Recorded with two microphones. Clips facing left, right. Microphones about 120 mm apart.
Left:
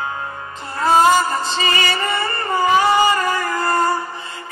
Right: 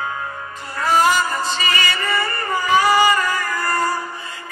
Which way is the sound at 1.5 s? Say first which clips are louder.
Left 2 dB; 30° left (ahead or behind).